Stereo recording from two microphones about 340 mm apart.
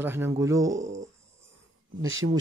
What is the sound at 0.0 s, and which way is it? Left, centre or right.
Speech, centre.